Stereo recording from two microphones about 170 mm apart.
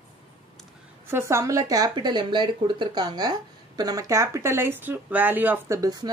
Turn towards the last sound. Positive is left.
turn(degrees=-20)  # may be behind; listen again after turning